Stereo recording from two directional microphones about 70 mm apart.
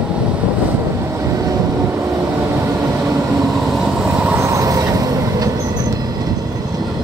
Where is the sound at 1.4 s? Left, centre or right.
Right.